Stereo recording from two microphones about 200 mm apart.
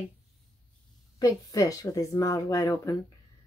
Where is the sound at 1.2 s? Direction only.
15° left (ahead or behind).